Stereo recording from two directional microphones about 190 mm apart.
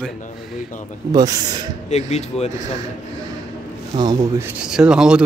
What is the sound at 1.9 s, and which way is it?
Speech, 35° left (ahead or behind).